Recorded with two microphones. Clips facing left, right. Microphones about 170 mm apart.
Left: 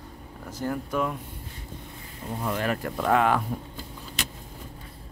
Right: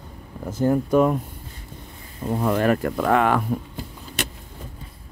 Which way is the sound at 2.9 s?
70° right (ahead or behind).